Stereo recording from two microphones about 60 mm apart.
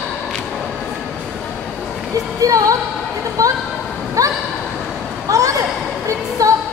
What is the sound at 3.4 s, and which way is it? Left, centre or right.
Speech, right.